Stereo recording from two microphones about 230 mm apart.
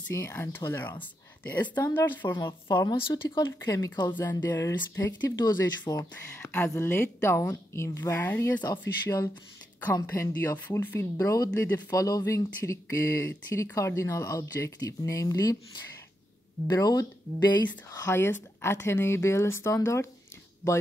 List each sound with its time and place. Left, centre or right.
0.1 s speech: centre